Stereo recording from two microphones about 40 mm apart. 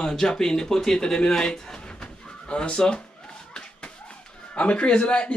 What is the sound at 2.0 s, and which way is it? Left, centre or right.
Chicken, left.